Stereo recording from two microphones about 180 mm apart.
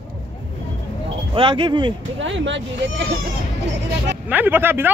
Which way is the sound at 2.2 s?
90° right.